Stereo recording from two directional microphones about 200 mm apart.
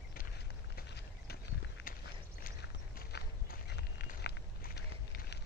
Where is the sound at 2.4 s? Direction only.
55° left (ahead or behind).